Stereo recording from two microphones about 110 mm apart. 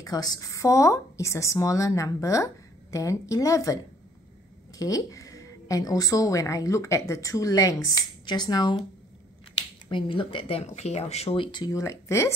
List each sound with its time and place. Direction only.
0.0 s a woman's voice: 35° left (ahead or behind)
9.8 s speech: 50° left (ahead or behind)
10.6 s speech: 80° left
11.3 s speech: 45° left (ahead or behind)
11.7 s speech: 30° left (ahead or behind)